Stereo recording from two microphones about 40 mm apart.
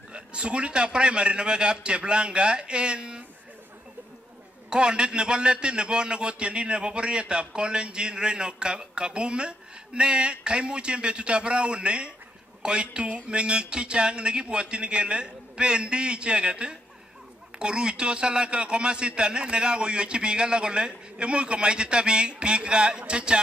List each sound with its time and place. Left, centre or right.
0.1 s a man's voice: right
4.6 s a man's voice: right